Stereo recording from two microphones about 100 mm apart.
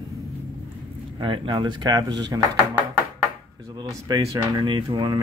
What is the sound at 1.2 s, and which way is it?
Speech, 60° right (ahead or behind).